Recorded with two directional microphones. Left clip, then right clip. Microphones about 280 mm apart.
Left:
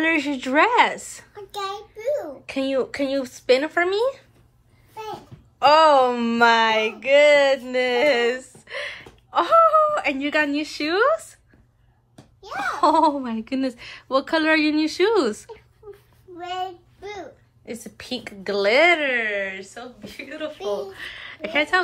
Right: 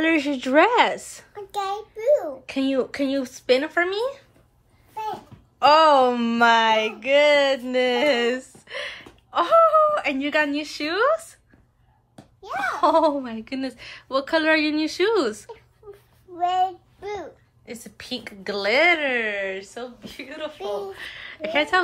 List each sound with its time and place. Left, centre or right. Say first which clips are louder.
0.0 s a woman's voice: even; centre
5.6 s speech: left 1 dB; centre
12.4 s a woman's voice: left 1 dB; centre
16.3 s child singing: right 8 dB; centre
17.6 s a woman's voice: left 2 dB; centre